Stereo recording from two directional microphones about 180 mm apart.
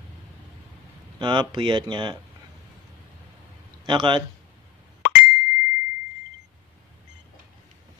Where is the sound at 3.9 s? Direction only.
25° right (ahead or behind).